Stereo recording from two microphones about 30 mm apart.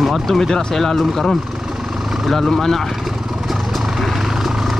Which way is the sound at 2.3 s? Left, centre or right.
Centre.